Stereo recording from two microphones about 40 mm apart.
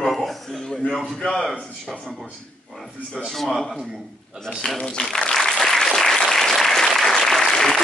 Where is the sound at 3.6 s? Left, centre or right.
Centre.